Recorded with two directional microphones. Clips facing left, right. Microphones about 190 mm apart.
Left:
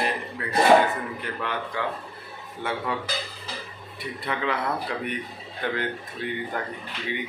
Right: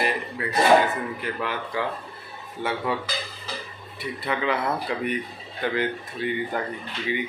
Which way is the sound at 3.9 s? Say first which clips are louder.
Right 2 dB; centre (ahead or behind).